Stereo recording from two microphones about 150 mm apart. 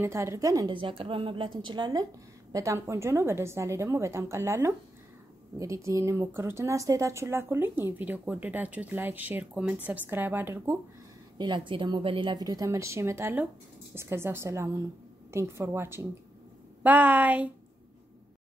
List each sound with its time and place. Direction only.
0.0 s a woman's voice: 20° right (ahead or behind)
0.7 s a woman's voice: 35° right (ahead or behind); by 10.8 s 15° right (ahead or behind)
11.3 s a woman's voice: 30° right (ahead or behind); by 17.5 s 10° right (ahead or behind)